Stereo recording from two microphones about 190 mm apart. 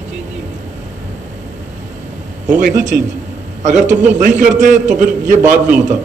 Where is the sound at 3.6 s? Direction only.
40° right (ahead or behind).